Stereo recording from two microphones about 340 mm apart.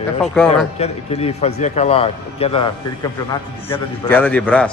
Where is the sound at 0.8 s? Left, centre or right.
Centre.